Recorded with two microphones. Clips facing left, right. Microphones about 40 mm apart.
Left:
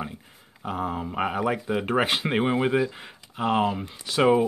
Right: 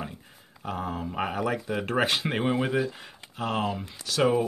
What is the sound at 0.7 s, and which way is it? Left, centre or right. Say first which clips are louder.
Speech: left 3 dB; centre.